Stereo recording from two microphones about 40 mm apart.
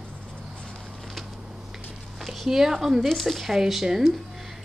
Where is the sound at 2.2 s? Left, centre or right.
Centre.